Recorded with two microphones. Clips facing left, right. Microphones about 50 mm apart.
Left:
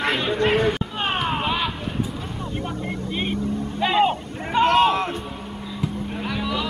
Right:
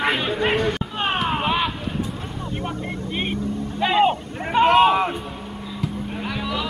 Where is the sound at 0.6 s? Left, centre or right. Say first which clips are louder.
Left 1 dB; centre.